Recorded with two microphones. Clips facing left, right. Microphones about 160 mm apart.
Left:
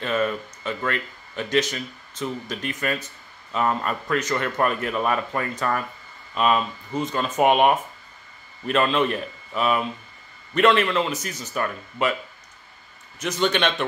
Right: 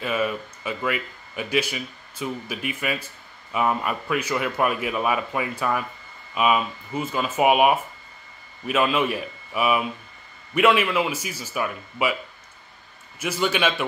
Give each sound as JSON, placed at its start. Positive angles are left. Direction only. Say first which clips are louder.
{"t": 0.0, "sound": "speech", "louder": "left 1 dB", "side_deg": -10}
{"t": 13.2, "sound": "speech", "louder": "left 1 dB", "side_deg": -10}